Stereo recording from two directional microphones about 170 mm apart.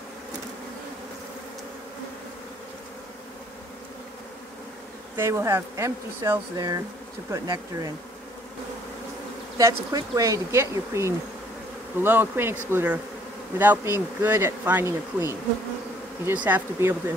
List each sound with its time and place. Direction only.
5.1 s speech: 15° right (ahead or behind)
9.6 s speech: 20° right (ahead or behind)